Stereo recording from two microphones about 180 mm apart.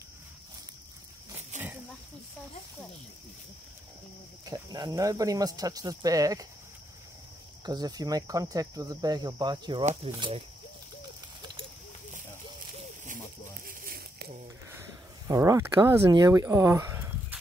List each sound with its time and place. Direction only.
1.5 s snake: 40° right (ahead or behind)
4.5 s speech: 20° right (ahead or behind)
7.6 s speech: 20° right (ahead or behind)
13.7 s a sound: 55° right (ahead or behind)
14.7 s speech: 15° right (ahead or behind)